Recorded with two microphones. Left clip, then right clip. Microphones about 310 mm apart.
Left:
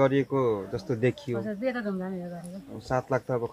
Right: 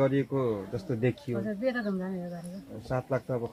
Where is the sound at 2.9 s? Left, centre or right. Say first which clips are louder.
Left 4 dB; left.